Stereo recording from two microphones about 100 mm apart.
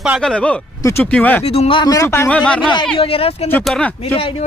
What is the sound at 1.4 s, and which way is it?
Speech, 80° left.